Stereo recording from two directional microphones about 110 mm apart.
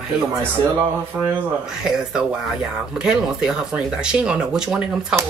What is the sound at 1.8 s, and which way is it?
A woman's voice, 5° right (ahead or behind).